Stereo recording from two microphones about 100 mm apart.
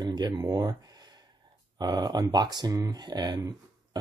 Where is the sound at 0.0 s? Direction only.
50° right (ahead or behind).